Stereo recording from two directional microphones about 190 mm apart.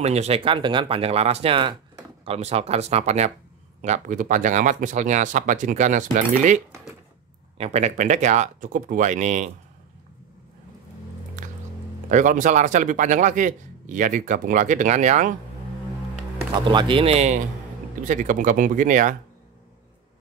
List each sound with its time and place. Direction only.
0.0 s a man's voice: 35° right (ahead or behind)
11.4 s music: 40° right (ahead or behind)
12.1 s a man's voice: 40° right (ahead or behind)
16.3 s speech: 25° right (ahead or behind); by 19.1 s 45° right (ahead or behind)